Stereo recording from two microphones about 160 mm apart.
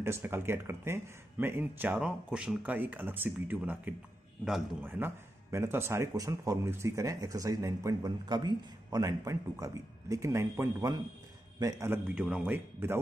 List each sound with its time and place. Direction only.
0.0 s a man's voice: 15° right (ahead or behind)
4.8 s a man's voice: 15° right (ahead or behind)